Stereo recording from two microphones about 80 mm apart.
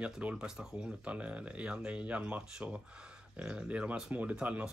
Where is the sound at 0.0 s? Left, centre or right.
Centre.